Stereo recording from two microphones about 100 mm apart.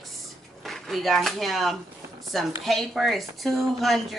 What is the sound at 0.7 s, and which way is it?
Speech, centre (ahead or behind).